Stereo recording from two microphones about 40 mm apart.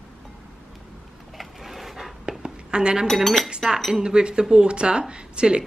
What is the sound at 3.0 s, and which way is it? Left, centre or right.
Speech, centre.